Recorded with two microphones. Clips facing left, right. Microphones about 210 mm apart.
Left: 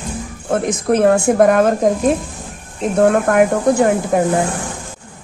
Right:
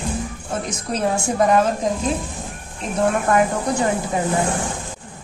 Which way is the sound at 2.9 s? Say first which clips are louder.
Left 5 dB; 65° left (ahead or behind).